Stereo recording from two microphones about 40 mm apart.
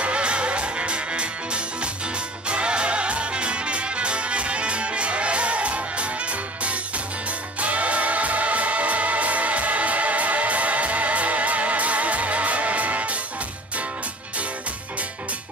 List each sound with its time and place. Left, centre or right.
0.0 s music: right
7.6 s music: right